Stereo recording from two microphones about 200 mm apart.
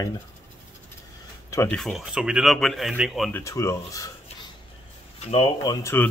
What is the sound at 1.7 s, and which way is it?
Speech, 5° left (ahead or behind).